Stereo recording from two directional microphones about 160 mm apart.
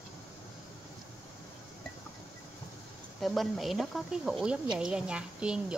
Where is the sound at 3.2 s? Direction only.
Centre (ahead or behind).